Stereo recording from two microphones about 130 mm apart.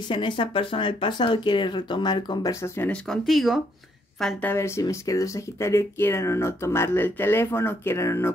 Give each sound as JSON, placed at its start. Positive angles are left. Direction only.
{"t": 0.1, "sound": "speech", "side_deg": 40}
{"t": 2.6, "sound": "speech", "side_deg": 15}
{"t": 3.1, "sound": "speech", "side_deg": 0}
{"t": 4.4, "sound": "speech", "side_deg": 20}